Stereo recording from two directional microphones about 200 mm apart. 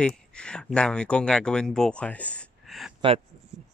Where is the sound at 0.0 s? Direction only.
5° left (ahead or behind).